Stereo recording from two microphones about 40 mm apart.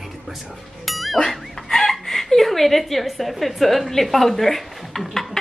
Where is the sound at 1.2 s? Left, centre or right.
Centre.